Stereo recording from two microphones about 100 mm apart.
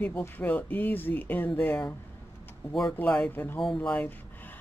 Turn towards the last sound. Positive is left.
turn(degrees=15)  # may be behind; listen again after turning